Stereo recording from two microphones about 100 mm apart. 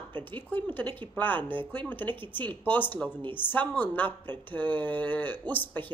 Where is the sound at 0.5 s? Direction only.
20° left (ahead or behind).